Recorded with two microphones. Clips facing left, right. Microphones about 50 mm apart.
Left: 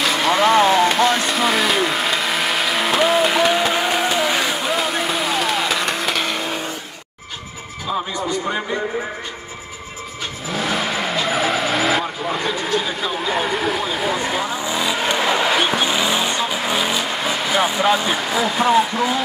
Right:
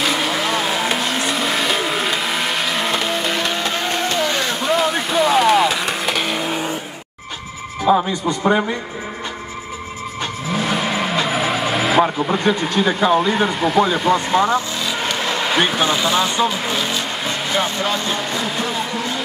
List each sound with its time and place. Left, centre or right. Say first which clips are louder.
0.0 s vehicle: left 3 dB; centre
7.8 s speech: right 7 dB; right
10.5 s vehicle: right 1 dB; centre
13.3 s speech: right 3 dB; centre
14.6 s speech: left 3 dB; centre
15.0 s a sound: left 3 dB; centre
15.7 s speech: right 1 dB; centre